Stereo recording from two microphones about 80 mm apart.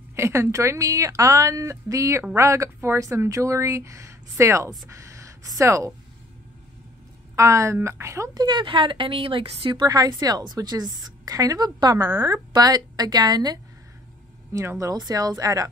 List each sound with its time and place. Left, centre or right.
0.1 s speech: right
7.3 s speech: right
8.4 s speech: right
9.8 s a woman's voice: right
14.5 s a woman's voice: right